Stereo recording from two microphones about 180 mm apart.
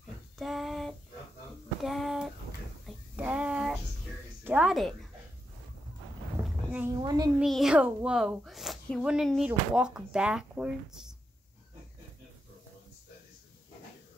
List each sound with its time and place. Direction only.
0.4 s child singing: centre (ahead or behind)
1.8 s a sound: centre (ahead or behind)
4.5 s a woman's voice: 5° right (ahead or behind)
6.4 s boat: 10° right (ahead or behind)
7.0 s a child's voice: 20° right (ahead or behind)
7.3 s speech: centre (ahead or behind)